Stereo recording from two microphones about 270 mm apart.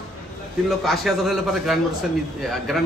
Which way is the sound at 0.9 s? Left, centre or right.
Centre.